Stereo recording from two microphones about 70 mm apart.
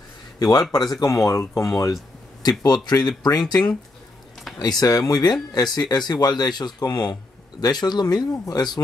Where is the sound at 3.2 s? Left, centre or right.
Left.